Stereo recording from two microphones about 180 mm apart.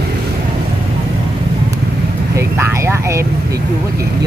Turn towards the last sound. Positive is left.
turn(degrees=-15)  # may be behind; listen again after turning